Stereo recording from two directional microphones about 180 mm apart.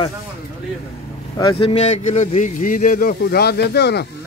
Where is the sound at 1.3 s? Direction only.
30° left (ahead or behind); by 4.0 s 65° left (ahead or behind).